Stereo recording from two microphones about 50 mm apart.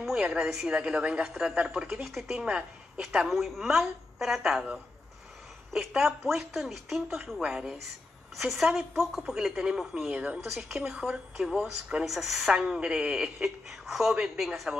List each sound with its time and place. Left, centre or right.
0.0 s a sound: centre
0.7 s a woman's voice: right
1.9 s a woman's voice: centre
5.7 s a woman's voice: centre
10.1 s speech: right
10.4 s a woman's voice: centre